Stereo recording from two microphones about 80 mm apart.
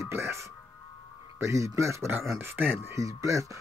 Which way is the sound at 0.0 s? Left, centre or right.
Right.